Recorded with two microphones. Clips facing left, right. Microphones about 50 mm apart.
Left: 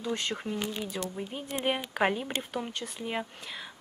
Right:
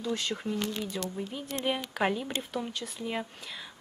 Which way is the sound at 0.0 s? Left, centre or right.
Left.